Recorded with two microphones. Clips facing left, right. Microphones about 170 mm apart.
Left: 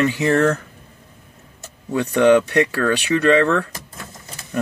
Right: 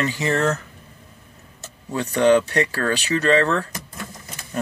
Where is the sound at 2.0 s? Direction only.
60° left (ahead or behind).